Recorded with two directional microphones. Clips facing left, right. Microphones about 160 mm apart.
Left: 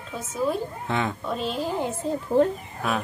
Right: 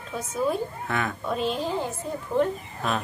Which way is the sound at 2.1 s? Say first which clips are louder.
Left 5 dB; 30° left (ahead or behind).